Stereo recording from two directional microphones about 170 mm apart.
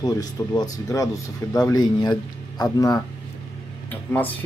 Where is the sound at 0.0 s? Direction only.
20° left (ahead or behind).